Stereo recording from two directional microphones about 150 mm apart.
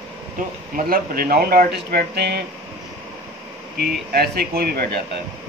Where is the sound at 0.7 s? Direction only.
75° right (ahead or behind).